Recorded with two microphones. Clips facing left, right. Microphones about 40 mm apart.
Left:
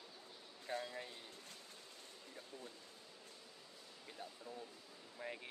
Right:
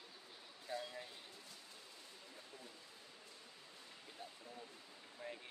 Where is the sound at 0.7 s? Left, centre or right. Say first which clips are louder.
Left 2 dB; left.